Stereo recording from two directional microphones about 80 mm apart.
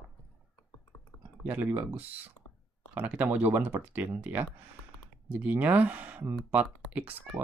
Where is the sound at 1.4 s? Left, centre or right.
Right.